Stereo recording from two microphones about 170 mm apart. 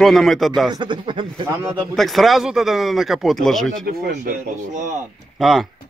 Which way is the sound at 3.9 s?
60° right (ahead or behind).